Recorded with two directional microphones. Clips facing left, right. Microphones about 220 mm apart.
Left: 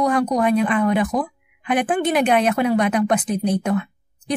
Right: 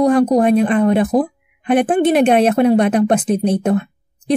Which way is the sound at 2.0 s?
25° right (ahead or behind).